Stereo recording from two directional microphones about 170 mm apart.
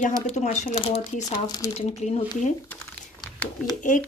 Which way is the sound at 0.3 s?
45° left (ahead or behind).